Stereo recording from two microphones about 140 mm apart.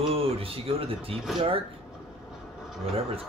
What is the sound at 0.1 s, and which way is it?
Speech, 45° right (ahead or behind).